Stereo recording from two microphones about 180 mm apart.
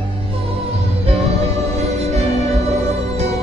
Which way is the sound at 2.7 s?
35° right (ahead or behind).